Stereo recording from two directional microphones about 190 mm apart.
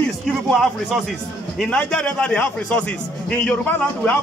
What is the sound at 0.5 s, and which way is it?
A man's voice, centre (ahead or behind).